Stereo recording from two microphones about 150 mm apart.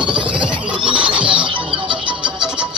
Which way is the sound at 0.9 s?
35° right (ahead or behind).